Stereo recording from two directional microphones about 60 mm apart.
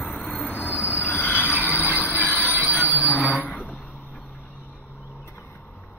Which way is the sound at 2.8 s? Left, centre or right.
Left.